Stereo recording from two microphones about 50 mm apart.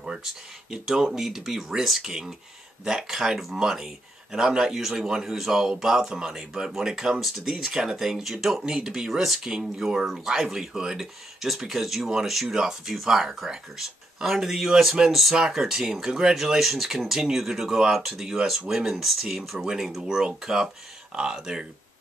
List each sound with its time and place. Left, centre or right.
0.0 s speech: centre
19.6 s speech: centre